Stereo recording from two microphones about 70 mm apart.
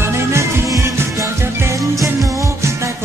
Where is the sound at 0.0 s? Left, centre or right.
Right.